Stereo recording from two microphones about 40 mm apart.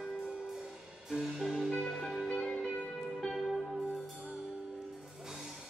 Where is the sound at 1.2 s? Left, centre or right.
Centre.